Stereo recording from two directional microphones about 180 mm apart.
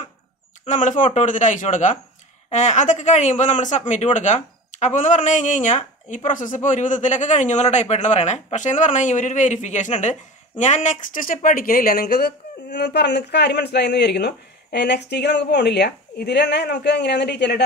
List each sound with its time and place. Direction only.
0.7 s speech: 45° left (ahead or behind); by 17.6 s 70° left (ahead or behind)